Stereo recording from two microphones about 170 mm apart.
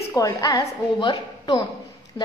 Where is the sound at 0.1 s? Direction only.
20° left (ahead or behind).